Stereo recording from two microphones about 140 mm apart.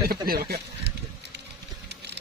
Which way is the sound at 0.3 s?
90° right.